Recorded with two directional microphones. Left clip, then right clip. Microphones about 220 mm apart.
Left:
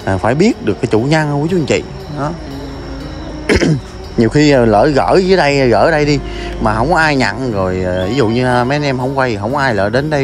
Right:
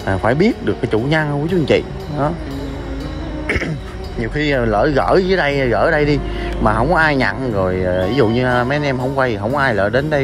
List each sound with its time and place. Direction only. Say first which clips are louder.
0.0 s speech: left 3 dB; 5° left (ahead or behind)
0.3 s speech: left 2 dB; 15° left (ahead or behind)
3.4 s throat clearing: left 8 dB; 40° left (ahead or behind)
4.2 s speech: left 8 dB; 30° left (ahead or behind)